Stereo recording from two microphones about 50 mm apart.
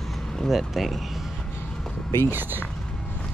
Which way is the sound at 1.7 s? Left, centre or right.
Centre.